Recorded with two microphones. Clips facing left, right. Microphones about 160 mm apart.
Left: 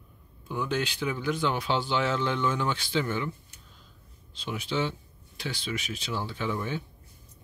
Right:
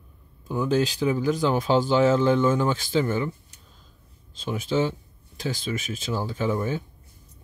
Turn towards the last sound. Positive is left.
turn(degrees=-40)  # may be behind; listen again after turning